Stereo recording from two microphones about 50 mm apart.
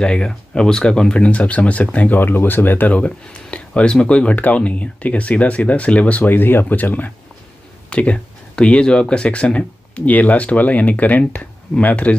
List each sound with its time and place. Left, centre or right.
0.0 s speech: centre
2.0 s speech: left
3.0 s speech: left
6.3 s speech: left
7.9 s speech: left